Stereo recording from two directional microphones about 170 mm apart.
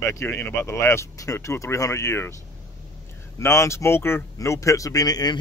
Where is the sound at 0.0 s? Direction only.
15° left (ahead or behind).